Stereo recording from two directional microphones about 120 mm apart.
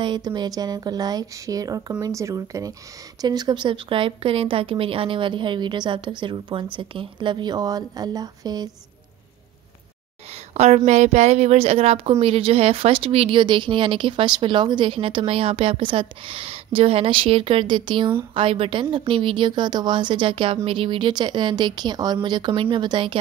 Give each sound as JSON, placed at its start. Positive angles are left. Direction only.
{"t": 0.0, "sound": "a woman's voice", "side_deg": -40}
{"t": 10.5, "sound": "a woman's voice", "side_deg": -65}